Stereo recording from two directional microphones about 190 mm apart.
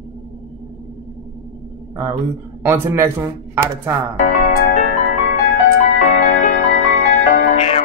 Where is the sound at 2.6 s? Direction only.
15° right (ahead or behind).